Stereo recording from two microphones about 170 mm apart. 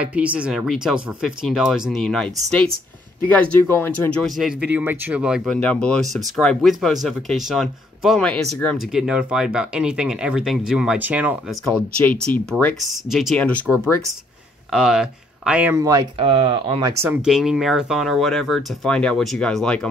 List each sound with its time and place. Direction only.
0.0 s speech: 10° right (ahead or behind)
3.3 s speech: 10° left (ahead or behind); by 5.6 s 5° right (ahead or behind)
5.6 s speech: 5° left (ahead or behind); by 11.3 s 10° right (ahead or behind)
12.3 s speech: 10° left (ahead or behind)
12.8 s speech: centre (ahead or behind)
14.7 s speech: 5° right (ahead or behind); by 16.1 s 20° right (ahead or behind)
16.2 s speech: 35° right (ahead or behind)
16.8 s speech: 10° right (ahead or behind); by 19.9 s 5° left (ahead or behind)